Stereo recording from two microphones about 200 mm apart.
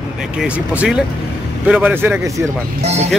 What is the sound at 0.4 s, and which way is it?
Speech, 5° right (ahead or behind).